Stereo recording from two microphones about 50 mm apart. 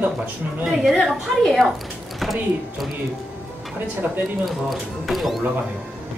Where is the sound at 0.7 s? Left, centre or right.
Centre.